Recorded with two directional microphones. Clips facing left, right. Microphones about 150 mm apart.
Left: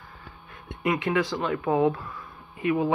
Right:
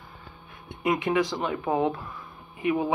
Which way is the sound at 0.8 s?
15° right (ahead or behind).